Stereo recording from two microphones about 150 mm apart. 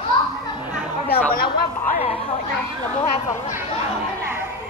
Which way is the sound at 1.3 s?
75° left (ahead or behind).